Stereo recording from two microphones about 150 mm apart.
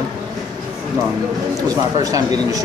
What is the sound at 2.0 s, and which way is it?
Speech, 25° right (ahead or behind).